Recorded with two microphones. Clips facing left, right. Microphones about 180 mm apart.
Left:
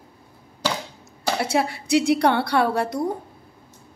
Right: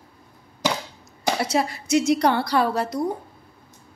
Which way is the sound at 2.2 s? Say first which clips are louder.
Left 1 dB; centre (ahead or behind).